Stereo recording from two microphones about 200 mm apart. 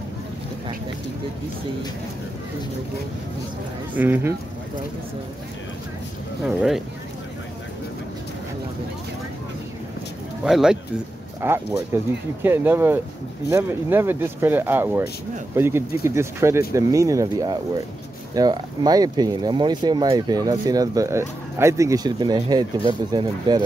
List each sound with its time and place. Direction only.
3.9 s speech: 10° right (ahead or behind)
6.4 s speech: centre (ahead or behind)
10.4 s speech: 5° right (ahead or behind); by 23.6 s 20° right (ahead or behind)